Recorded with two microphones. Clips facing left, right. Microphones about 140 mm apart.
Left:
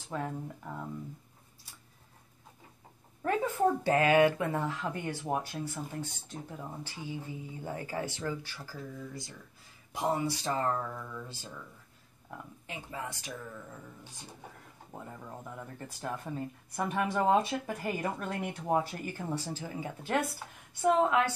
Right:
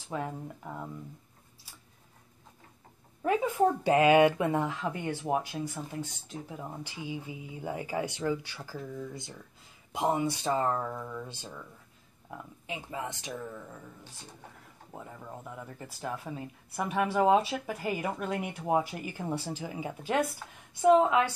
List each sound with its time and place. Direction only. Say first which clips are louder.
0.1 s speech: right 1 dB; 10° right (ahead or behind)
3.2 s speech: right 3 dB; 10° right (ahead or behind)
15.5 s speech: even; 5° right (ahead or behind)